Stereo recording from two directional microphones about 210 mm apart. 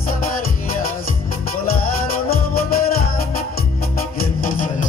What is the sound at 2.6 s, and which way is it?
Music, 45° left (ahead or behind).